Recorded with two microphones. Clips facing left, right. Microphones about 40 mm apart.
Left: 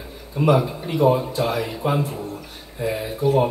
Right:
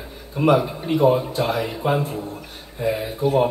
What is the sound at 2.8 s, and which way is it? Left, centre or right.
Speech, right.